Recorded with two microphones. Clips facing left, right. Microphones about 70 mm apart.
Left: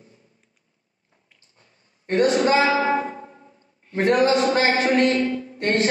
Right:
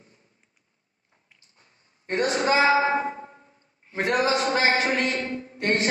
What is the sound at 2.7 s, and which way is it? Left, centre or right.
Music, right.